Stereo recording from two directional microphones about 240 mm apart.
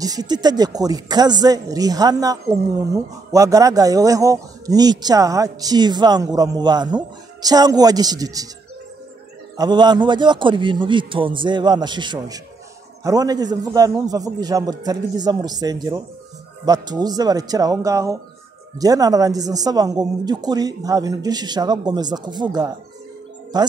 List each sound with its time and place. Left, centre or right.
0.0 s speech: centre
9.6 s a man's voice: centre